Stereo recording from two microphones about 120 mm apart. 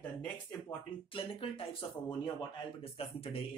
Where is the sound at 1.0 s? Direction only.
50° left (ahead or behind).